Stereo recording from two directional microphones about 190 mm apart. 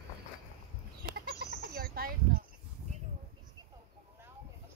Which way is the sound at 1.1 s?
60° right (ahead or behind).